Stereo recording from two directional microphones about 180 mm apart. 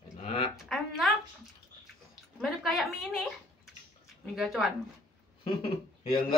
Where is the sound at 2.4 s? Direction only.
Centre (ahead or behind).